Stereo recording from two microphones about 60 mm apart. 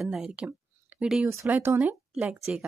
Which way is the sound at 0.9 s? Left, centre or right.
Right.